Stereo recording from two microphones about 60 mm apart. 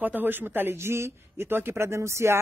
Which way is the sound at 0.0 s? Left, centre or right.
Right.